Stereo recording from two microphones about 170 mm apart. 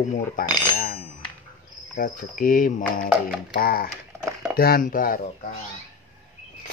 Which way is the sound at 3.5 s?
60° left (ahead or behind).